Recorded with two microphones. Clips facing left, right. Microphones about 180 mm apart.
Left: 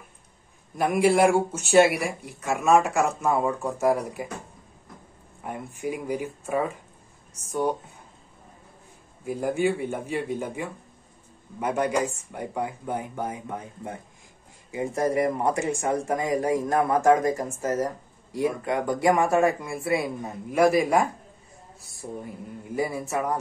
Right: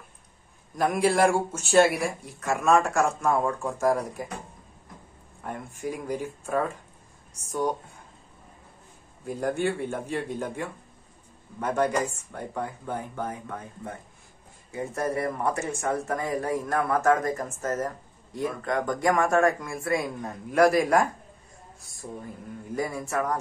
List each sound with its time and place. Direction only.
0.7 s speech: 5° left (ahead or behind)
2.4 s speech: centre (ahead or behind)
5.4 s speech: 10° left (ahead or behind)
9.2 s speech: 5° left (ahead or behind)
22.0 s speech: 20° left (ahead or behind)
22.8 s speech: 5° left (ahead or behind)